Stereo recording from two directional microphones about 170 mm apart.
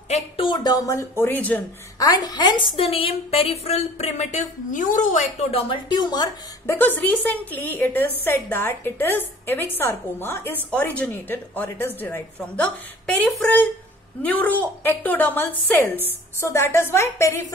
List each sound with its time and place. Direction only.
0.1 s a woman's voice: 30° left (ahead or behind); by 1.6 s 10° left (ahead or behind)
2.0 s a woman's voice: 25° left (ahead or behind)